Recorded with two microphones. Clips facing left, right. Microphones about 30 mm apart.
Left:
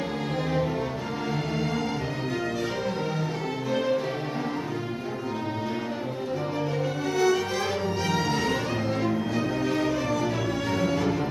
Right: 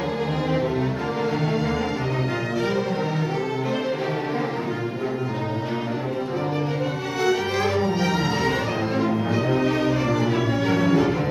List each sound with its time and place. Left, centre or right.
1.4 s music: centre
7.2 s music: right